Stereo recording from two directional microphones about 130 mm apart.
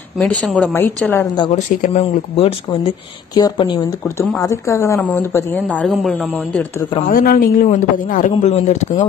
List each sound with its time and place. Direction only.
0.2 s speech: 5° left (ahead or behind)
2.0 s speech: 50° left (ahead or behind)
3.3 s speech: 35° left (ahead or behind)
4.4 s a woman's voice: 20° left (ahead or behind)
5.7 s speech: 5° left (ahead or behind)
7.1 s a man's voice: 90° left; by 9.0 s 60° left (ahead or behind)